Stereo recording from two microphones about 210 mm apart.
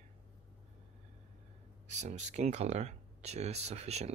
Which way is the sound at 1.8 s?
35° right (ahead or behind).